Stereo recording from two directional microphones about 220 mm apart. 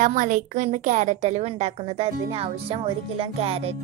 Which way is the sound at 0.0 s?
35° right (ahead or behind).